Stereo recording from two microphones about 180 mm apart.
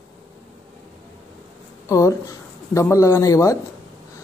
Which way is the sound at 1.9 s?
20° left (ahead or behind).